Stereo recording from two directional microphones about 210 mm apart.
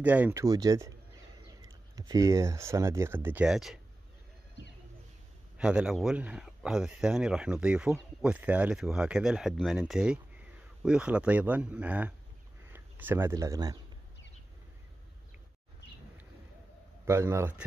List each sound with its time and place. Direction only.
0.0 s speech: 5° right (ahead or behind)
5.6 s speech: 5° right (ahead or behind)
17.0 s speech: 10° right (ahead or behind)